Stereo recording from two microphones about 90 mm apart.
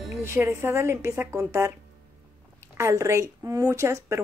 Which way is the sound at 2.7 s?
35° right (ahead or behind).